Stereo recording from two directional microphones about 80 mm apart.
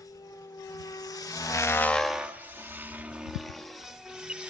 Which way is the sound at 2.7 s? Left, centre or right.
Right.